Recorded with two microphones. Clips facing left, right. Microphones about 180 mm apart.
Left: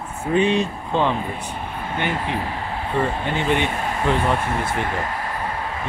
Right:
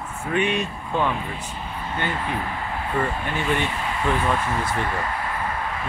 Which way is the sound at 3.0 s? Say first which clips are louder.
Left 4 dB; 25° left (ahead or behind).